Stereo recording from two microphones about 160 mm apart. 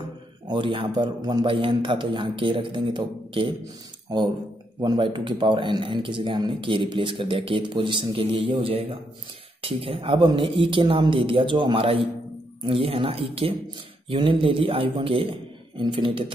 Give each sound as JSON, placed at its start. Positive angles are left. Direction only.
{"t": 0.5, "sound": "speech", "side_deg": -30}
{"t": 4.7, "sound": "speech", "side_deg": -30}